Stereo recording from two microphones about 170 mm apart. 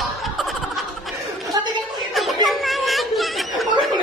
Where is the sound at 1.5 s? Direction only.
25° right (ahead or behind).